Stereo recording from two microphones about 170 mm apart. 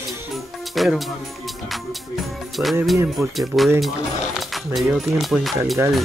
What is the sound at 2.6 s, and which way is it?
Speech, 5° right (ahead or behind).